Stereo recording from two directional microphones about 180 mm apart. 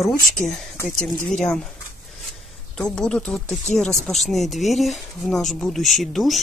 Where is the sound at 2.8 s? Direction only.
5° left (ahead or behind).